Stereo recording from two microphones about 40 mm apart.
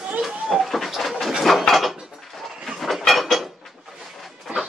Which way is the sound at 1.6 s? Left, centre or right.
Centre.